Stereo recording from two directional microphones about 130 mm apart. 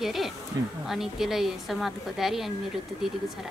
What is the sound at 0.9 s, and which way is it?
A woman's voice, centre (ahead or behind).